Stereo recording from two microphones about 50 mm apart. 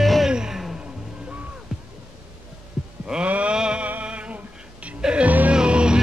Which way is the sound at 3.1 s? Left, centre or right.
Right.